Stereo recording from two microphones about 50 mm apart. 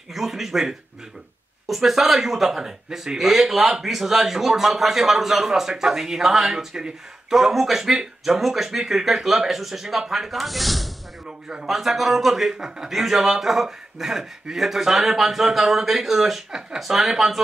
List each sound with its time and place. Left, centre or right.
0.1 s a man's voice: centre
11.2 s speech: centre
11.6 s a man's voice: centre